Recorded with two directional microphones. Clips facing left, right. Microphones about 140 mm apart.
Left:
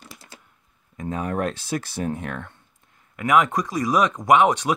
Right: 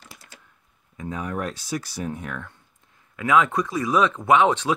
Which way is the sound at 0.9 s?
50° left (ahead or behind).